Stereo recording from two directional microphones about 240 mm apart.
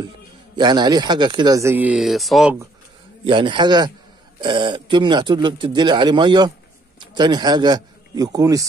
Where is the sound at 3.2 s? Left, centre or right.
Centre.